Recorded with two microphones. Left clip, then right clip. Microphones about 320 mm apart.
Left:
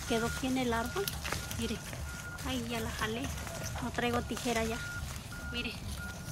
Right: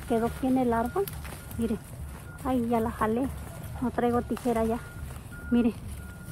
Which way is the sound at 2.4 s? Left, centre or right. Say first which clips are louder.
Right 11 dB; centre.